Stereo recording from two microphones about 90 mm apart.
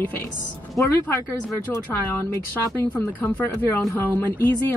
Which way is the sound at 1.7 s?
25° left (ahead or behind).